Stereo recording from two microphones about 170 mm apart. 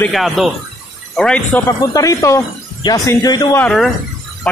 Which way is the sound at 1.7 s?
20° left (ahead or behind).